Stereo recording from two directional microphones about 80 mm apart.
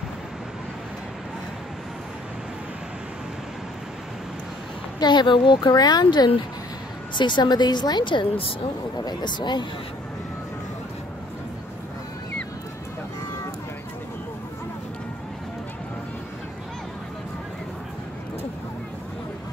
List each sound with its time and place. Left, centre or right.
5.0 s a woman's voice: left
9.0 s a woman's voice: left